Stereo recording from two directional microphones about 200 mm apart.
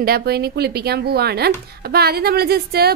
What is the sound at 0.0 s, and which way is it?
A woman's voice, 50° right (ahead or behind).